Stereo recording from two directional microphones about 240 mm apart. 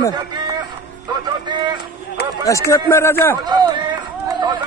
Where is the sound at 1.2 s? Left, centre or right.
Centre.